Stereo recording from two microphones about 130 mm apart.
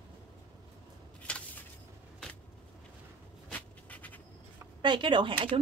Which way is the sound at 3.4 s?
10° left (ahead or behind).